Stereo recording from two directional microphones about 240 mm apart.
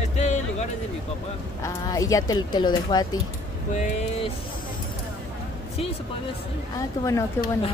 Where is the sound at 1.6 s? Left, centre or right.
Centre.